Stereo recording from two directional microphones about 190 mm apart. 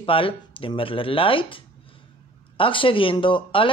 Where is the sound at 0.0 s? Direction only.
30° left (ahead or behind).